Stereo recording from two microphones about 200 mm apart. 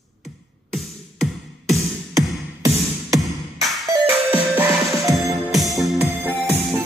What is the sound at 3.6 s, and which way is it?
Music, centre (ahead or behind).